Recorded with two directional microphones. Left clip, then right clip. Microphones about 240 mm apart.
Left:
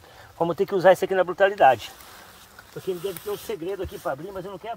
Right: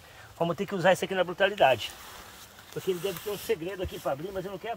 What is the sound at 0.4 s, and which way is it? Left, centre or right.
Speech, left.